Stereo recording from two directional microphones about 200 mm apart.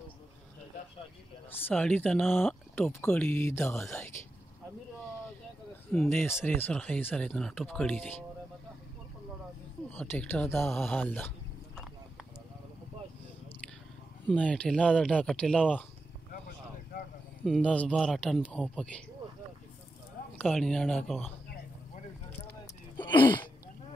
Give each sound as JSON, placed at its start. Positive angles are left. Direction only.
{"t": 1.7, "sound": "speech", "side_deg": 5}
{"t": 5.9, "sound": "speech", "side_deg": 5}
{"t": 9.8, "sound": "speech", "side_deg": 10}
{"t": 14.3, "sound": "speech", "side_deg": 5}
{"t": 16.3, "sound": "a sound", "side_deg": 45}
{"t": 17.5, "sound": "speech", "side_deg": 5}
{"t": 20.3, "sound": "speech", "side_deg": 5}
{"t": 22.9, "sound": "a sound", "side_deg": 25}